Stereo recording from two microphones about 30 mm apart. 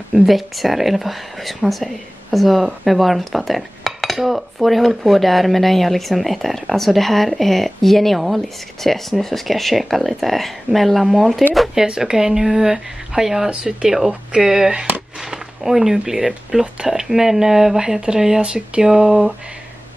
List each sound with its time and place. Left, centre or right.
0.3 s dishes: centre
12.0 s speech: centre
13.5 s speech: right
13.8 s speech: centre